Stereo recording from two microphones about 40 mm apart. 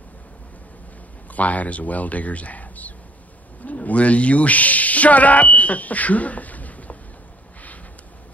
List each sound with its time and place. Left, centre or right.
1.3 s speech: left